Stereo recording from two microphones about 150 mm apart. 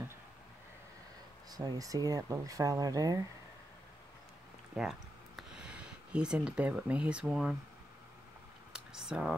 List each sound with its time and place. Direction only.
1.5 s speech: 25° right (ahead or behind)
4.7 s speech: 5° right (ahead or behind)
8.7 s a sound: 5° right (ahead or behind)